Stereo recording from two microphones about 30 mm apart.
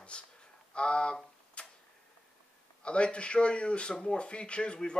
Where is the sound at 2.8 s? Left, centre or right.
Left.